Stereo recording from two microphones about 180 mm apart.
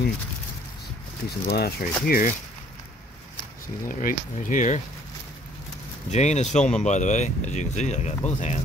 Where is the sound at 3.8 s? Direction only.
45° left (ahead or behind).